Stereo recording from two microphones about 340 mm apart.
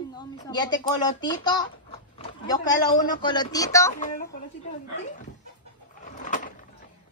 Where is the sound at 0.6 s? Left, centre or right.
Centre.